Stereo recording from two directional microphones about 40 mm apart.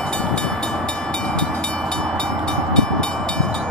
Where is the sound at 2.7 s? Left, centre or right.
Left.